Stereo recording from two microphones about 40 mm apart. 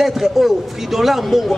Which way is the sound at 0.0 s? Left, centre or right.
Centre.